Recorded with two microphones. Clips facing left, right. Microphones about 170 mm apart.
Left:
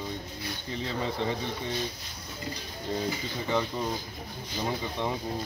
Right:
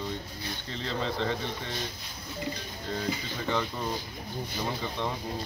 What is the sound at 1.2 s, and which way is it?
Speech, 10° left (ahead or behind).